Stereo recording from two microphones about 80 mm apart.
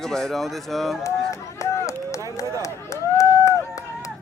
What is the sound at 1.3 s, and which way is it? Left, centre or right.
Run, left.